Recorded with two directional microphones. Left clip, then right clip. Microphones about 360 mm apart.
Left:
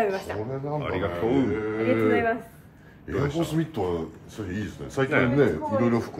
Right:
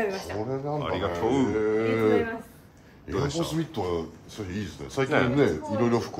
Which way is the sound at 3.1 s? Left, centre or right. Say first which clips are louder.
Left 1 dB; centre.